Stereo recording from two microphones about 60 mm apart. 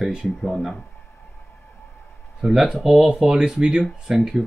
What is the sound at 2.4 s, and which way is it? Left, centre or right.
Speech, centre.